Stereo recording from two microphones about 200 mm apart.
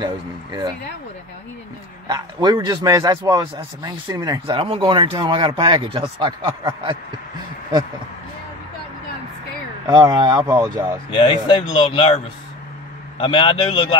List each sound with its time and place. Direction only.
0.0 s a man's voice: 20° right (ahead or behind)
2.0 s a man's voice: 20° right (ahead or behind)
9.8 s a man's voice: 20° right (ahead or behind)
11.1 s speech: 25° left (ahead or behind)
13.2 s speech: 25° left (ahead or behind)